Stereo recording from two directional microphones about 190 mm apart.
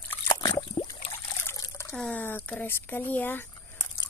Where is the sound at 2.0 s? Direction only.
10° left (ahead or behind).